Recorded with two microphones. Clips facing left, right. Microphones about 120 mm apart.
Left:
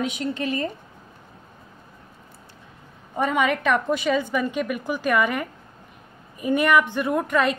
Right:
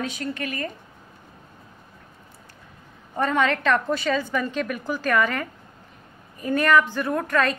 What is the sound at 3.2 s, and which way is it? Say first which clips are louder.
A woman's voice: even; 10° left (ahead or behind).